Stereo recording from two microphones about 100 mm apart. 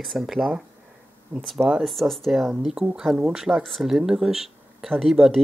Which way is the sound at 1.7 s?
Centre (ahead or behind).